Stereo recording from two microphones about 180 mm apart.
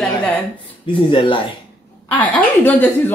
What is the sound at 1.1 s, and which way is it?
Speech, 30° left (ahead or behind).